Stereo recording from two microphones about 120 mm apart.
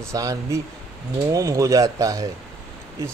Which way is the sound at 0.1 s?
25° right (ahead or behind).